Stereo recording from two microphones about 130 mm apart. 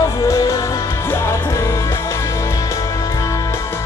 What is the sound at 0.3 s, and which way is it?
Music, 25° left (ahead or behind).